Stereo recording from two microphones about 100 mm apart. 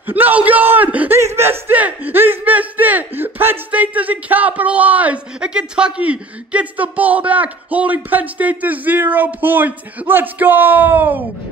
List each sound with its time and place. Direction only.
0.0 s a man's voice: 15° right (ahead or behind)